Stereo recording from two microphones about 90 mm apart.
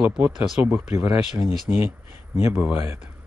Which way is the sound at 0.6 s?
30° right (ahead or behind).